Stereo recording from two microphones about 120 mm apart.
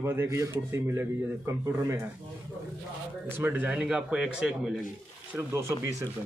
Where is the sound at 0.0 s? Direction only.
20° right (ahead or behind).